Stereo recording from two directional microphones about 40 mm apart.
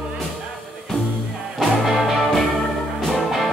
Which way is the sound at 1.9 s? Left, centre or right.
Centre.